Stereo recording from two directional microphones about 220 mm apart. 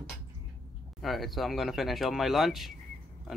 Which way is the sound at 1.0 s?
Centre (ahead or behind).